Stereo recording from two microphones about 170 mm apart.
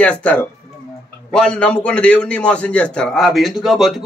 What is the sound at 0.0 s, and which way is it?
A man's voice, 10° left (ahead or behind).